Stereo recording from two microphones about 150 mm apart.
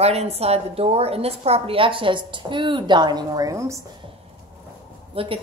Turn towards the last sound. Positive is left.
turn(degrees=-35)  # may be behind; listen again after turning